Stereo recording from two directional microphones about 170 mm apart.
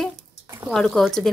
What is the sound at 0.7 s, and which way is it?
Speech, centre (ahead or behind).